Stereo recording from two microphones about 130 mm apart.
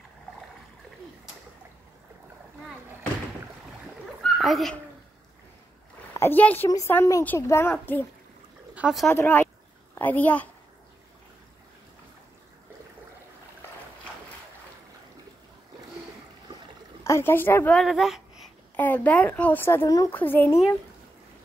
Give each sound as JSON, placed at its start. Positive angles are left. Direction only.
{"t": 4.2, "sound": "a sound", "side_deg": 0}
{"t": 6.1, "sound": "speech", "side_deg": 15}
{"t": 8.7, "sound": "a sound", "side_deg": -5}
{"t": 9.1, "sound": "speech", "side_deg": 15}
{"t": 17.0, "sound": "speech", "side_deg": 20}
{"t": 17.7, "sound": "speech", "side_deg": 0}
{"t": 18.8, "sound": "speech", "side_deg": 10}